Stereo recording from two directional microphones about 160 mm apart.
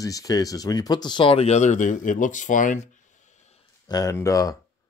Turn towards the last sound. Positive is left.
turn(degrees=20)  # may be behind; listen again after turning